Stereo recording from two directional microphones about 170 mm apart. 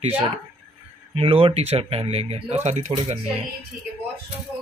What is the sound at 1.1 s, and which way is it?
Speech, 35° right (ahead or behind).